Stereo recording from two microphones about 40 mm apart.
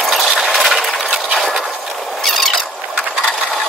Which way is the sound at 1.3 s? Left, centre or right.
Centre.